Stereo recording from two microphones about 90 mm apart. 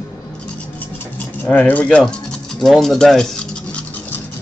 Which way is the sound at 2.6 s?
Centre (ahead or behind).